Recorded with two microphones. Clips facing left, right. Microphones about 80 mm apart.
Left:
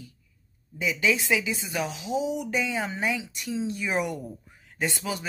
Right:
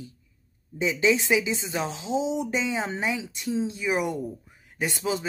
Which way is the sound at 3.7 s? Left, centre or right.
Centre.